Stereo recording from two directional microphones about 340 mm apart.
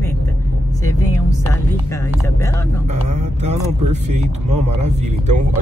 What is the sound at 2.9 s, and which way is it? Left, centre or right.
Speech, centre.